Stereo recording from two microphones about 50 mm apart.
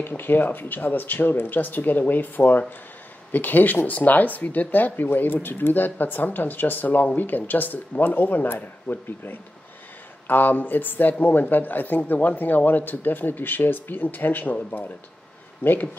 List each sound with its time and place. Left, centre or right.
0.0 s speech: left